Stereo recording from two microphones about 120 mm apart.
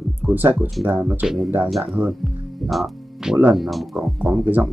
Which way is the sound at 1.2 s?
Centre (ahead or behind).